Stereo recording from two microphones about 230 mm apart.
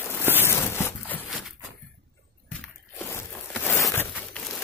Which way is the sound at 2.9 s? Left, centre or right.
Centre.